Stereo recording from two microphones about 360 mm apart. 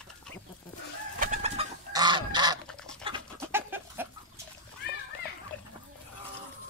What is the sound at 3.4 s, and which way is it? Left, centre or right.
Chicken, centre.